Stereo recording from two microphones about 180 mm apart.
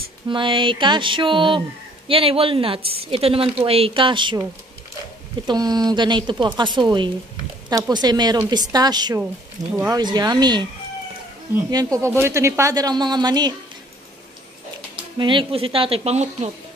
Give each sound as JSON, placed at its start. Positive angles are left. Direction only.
{"t": 0.3, "sound": "speech", "side_deg": -25}
{"t": 5.5, "sound": "speech", "side_deg": -20}
{"t": 15.1, "sound": "speech", "side_deg": -25}